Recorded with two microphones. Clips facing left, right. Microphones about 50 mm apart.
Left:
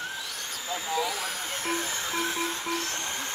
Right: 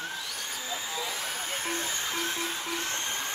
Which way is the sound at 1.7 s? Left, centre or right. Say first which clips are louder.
Left 5 dB; centre.